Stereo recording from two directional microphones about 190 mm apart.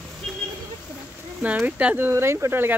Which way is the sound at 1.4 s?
5° right (ahead or behind).